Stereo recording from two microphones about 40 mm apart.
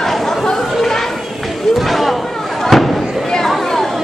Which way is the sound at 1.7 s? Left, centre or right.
Centre.